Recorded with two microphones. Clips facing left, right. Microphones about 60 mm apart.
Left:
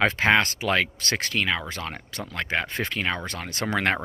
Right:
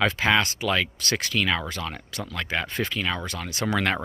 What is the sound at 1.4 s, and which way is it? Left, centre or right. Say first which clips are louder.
Speech: right 1 dB; centre.